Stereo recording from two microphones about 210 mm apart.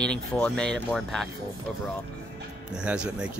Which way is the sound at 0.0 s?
5° left (ahead or behind).